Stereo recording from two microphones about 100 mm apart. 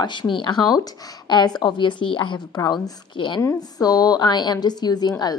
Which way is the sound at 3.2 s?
55° left (ahead or behind).